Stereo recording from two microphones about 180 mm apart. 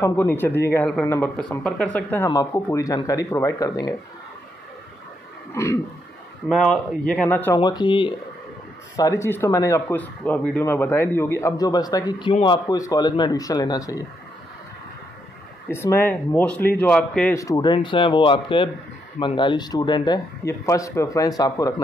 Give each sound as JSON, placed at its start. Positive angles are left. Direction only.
{"t": 0.0, "sound": "speech", "side_deg": 10}
{"t": 5.5, "sound": "speech", "side_deg": 15}
{"t": 6.5, "sound": "speech", "side_deg": 5}
{"t": 7.5, "sound": "speech", "side_deg": 25}
{"t": 15.7, "sound": "speech", "side_deg": 15}